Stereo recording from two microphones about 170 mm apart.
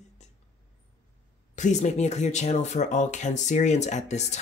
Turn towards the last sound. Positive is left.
turn(degrees=40)  # may be behind; listen again after turning